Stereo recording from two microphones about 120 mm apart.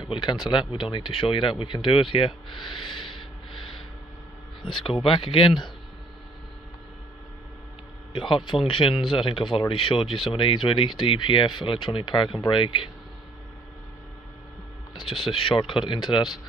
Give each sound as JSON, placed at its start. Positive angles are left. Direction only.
{"t": 0.0, "sound": "speech", "side_deg": 40}
{"t": 8.1, "sound": "speech", "side_deg": 40}
{"t": 15.0, "sound": "speech", "side_deg": 45}